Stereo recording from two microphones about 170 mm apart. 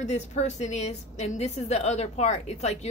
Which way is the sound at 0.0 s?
40° left (ahead or behind).